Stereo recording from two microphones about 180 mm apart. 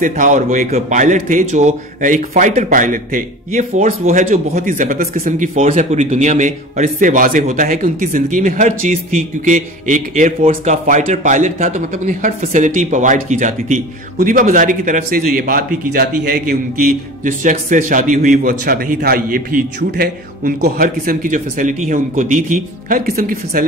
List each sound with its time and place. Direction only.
0.0 s speech: 45° right (ahead or behind)
5.5 s speech: 35° right (ahead or behind)